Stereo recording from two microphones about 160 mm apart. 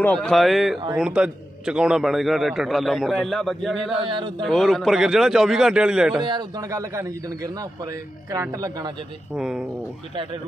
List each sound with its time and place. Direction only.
0.0 s a man's voice: 5° left (ahead or behind)
4.0 s speech: 30° right (ahead or behind)
4.4 s a man's voice: centre (ahead or behind)
6.2 s a man's voice: 25° right (ahead or behind)
9.3 s a man's voice: 5° right (ahead or behind)